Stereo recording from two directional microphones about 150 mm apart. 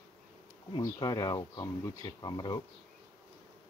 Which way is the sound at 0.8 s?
25° left (ahead or behind).